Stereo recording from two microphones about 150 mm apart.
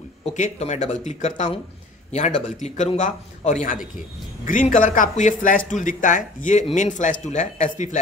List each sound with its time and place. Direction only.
0.2 s a man's voice: 50° left (ahead or behind)